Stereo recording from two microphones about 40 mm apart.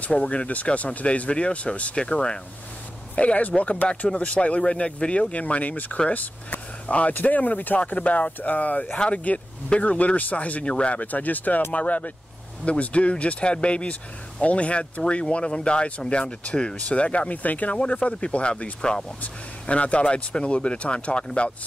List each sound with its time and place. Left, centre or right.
0.0 s speech: left
3.2 s speech: left
4.1 s speech: left
8.9 s speech: left
10.6 s speech: left
19.2 s speech: left